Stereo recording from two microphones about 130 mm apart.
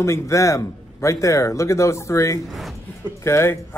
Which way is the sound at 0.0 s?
20° left (ahead or behind).